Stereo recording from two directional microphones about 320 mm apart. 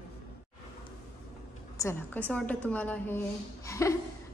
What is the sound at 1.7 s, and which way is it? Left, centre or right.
A woman's voice, centre.